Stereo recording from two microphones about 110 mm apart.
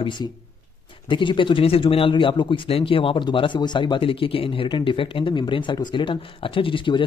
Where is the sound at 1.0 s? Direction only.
50° left (ahead or behind).